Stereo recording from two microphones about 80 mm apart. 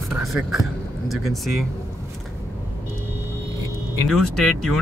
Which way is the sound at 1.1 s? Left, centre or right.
Centre.